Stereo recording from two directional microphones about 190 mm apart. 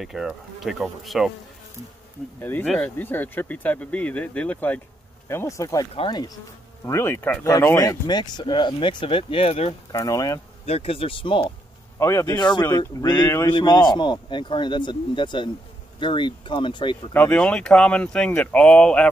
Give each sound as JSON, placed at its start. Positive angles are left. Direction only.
{"t": 0.0, "sound": "speech", "side_deg": 0}
{"t": 2.6, "sound": "speech", "side_deg": 5}
{"t": 6.9, "sound": "speech", "side_deg": 15}
{"t": 9.9, "sound": "speech", "side_deg": 15}
{"t": 10.6, "sound": "speech", "side_deg": 30}
{"t": 12.0, "sound": "speech", "side_deg": 15}
{"t": 17.1, "sound": "speech", "side_deg": 5}